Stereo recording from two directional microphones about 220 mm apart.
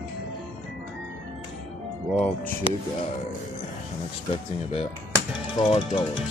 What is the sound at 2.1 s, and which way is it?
Speech, 5° left (ahead or behind).